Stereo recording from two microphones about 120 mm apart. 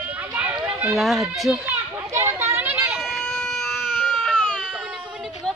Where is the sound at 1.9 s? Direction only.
20° right (ahead or behind).